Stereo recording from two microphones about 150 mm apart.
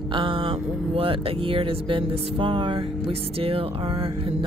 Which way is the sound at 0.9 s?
35° right (ahead or behind).